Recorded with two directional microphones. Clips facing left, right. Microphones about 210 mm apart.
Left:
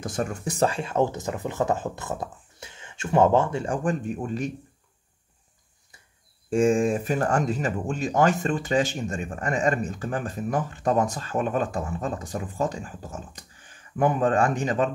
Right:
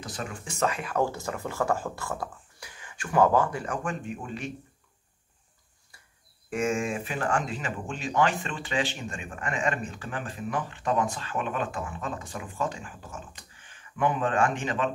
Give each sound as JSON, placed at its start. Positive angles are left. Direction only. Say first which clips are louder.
{"t": 0.0, "sound": "speech", "louder": "left 8 dB", "side_deg": 45}
{"t": 6.5, "sound": "speech", "louder": "left 7 dB", "side_deg": 30}